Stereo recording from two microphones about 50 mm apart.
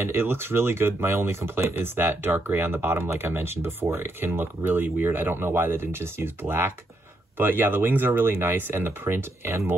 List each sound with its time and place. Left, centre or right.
0.0 s speech: right